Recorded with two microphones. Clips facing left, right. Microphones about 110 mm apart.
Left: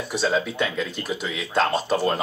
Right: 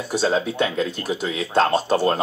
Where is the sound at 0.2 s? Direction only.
30° right (ahead or behind).